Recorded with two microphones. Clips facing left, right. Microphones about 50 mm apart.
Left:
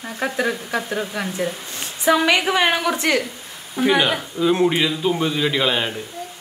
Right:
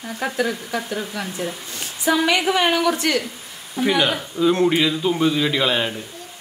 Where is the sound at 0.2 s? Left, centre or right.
Left.